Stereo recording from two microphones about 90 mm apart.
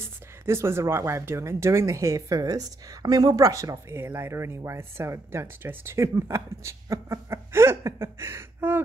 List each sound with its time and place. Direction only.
0.0 s speech: 30° right (ahead or behind)